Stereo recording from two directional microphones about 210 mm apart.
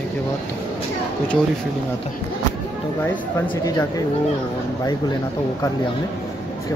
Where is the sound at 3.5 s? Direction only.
15° left (ahead or behind).